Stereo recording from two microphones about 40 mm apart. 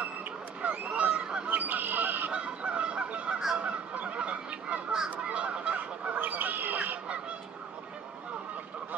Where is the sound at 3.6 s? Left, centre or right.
Right.